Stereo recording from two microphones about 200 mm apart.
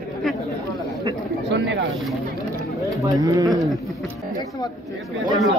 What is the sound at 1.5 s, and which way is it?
Speech, 65° right (ahead or behind).